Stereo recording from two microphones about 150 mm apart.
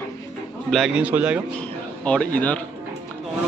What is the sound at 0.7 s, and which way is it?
Speech, 5° right (ahead or behind).